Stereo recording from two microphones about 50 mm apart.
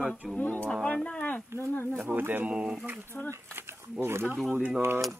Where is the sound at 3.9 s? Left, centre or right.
Right.